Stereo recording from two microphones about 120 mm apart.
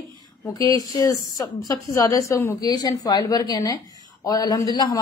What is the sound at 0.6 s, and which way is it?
A woman's voice, 30° left (ahead or behind).